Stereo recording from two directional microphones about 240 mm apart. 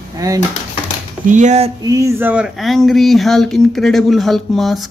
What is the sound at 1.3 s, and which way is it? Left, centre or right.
Speech, right.